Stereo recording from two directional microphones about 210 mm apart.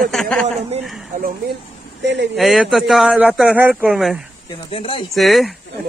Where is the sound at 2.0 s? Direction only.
55° right (ahead or behind).